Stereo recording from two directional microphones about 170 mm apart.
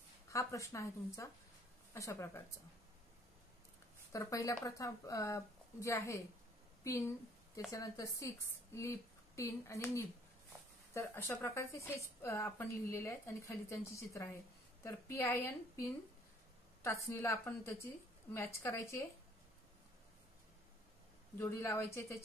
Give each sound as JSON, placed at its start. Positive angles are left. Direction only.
{"t": 0.3, "sound": "a woman's voice", "side_deg": 20}
{"t": 4.1, "sound": "a woman's voice", "side_deg": 20}
{"t": 7.7, "sound": "a woman's voice", "side_deg": 20}
{"t": 21.4, "sound": "a woman's voice", "side_deg": 15}